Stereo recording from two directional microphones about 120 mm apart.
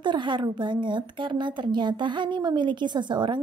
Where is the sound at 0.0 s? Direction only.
40° right (ahead or behind).